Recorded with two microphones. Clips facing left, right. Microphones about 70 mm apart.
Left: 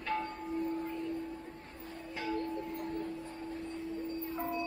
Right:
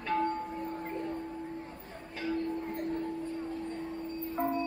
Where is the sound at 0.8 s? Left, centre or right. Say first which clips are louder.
Right 2 dB; right.